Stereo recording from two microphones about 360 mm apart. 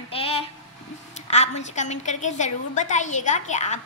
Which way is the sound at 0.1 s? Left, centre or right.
Centre.